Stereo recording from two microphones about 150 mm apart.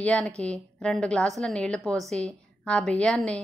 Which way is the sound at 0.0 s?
5° left (ahead or behind).